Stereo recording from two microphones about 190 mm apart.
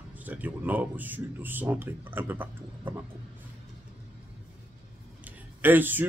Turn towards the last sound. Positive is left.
turn(degrees=-10)  # may be behind; listen again after turning